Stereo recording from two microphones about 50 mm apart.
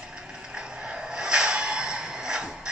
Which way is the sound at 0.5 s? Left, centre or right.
Centre.